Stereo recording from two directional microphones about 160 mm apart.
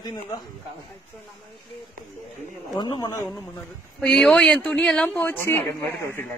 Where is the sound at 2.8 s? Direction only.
25° left (ahead or behind).